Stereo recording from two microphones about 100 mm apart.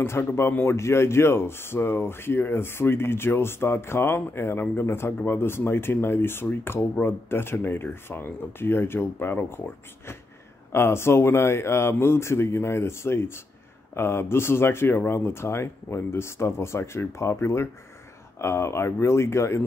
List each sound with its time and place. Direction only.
0.0 s speech: 25° left (ahead or behind)
10.7 s speech: 25° left (ahead or behind)